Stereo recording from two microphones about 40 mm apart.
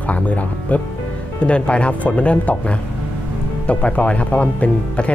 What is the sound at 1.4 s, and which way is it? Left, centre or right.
Speech, left.